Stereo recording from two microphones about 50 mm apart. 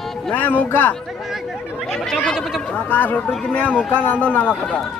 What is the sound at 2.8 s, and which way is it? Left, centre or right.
Speech, left.